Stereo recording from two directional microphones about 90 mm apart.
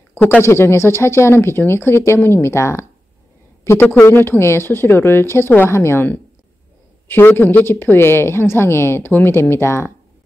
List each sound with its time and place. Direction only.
0.1 s a woman's voice: 25° left (ahead or behind)